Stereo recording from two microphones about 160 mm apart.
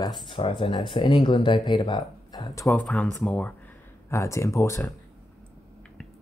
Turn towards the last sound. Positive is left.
turn(degrees=20)  # may be behind; listen again after turning